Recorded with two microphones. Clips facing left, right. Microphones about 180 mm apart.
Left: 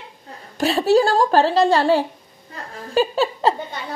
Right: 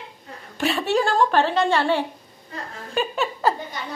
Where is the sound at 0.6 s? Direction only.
35° left (ahead or behind).